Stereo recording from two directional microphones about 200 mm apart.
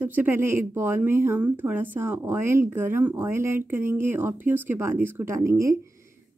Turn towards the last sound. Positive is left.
turn(degrees=-15)  # may be behind; listen again after turning